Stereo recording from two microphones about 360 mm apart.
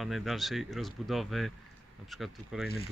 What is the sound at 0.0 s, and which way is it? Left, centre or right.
Speech, centre.